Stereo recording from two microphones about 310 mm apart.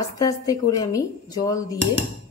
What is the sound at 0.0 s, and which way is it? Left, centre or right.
Speech, centre.